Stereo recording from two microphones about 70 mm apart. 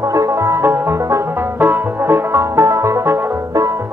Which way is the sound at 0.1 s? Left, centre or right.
Right.